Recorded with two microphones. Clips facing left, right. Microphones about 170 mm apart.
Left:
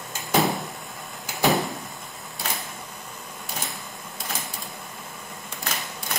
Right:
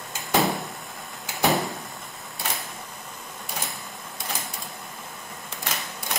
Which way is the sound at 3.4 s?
Centre (ahead or behind).